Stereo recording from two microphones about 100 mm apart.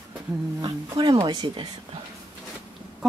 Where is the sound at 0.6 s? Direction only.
50° right (ahead or behind).